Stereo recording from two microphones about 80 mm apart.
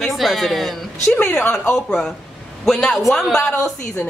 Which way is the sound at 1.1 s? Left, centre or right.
Left.